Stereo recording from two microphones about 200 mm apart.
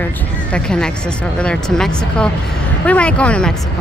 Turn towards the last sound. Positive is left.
turn(degrees=5)  # may be behind; listen again after turning